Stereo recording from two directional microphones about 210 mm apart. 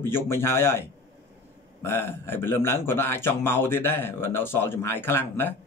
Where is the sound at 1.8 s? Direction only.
10° left (ahead or behind).